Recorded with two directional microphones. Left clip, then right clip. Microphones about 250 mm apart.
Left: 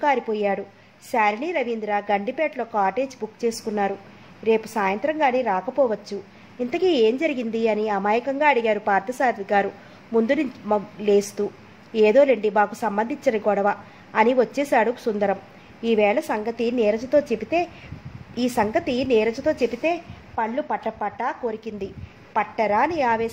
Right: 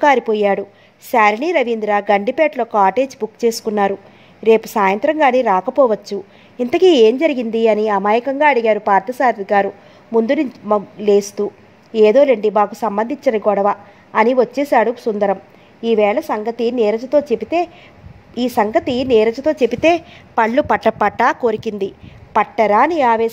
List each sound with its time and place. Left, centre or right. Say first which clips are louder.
0.0 s a woman's voice: right 8 dB; right